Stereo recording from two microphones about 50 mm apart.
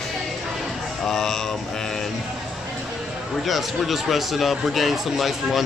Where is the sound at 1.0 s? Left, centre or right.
Centre.